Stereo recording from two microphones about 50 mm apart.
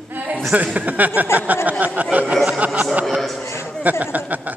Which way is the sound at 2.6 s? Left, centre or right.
Right.